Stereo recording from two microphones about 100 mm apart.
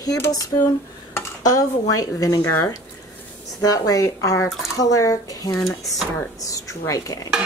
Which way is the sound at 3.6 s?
40° left (ahead or behind).